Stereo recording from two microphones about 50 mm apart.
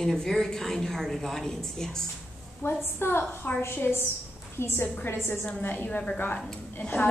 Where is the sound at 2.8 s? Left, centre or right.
Left.